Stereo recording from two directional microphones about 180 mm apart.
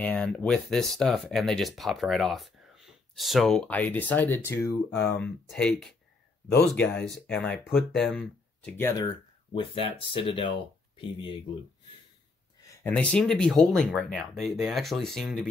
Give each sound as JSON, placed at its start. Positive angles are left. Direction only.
{"t": 0.0, "sound": "speech", "side_deg": 5}
{"t": 5.1, "sound": "speech", "side_deg": 5}
{"t": 8.8, "sound": "speech", "side_deg": 20}
{"t": 12.6, "sound": "speech", "side_deg": 10}